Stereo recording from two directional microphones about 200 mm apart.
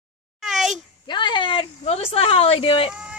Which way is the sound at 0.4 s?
Centre (ahead or behind).